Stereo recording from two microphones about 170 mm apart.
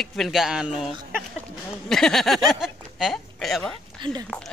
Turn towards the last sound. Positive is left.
turn(degrees=-30)  # may be behind; listen again after turning